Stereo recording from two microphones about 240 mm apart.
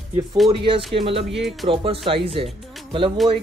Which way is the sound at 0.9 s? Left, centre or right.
Right.